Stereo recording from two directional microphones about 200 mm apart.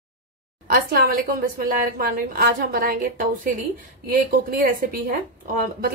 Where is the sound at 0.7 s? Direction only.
50° right (ahead or behind).